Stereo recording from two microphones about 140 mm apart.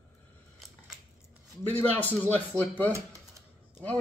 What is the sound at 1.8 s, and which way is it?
Speech, 15° left (ahead or behind).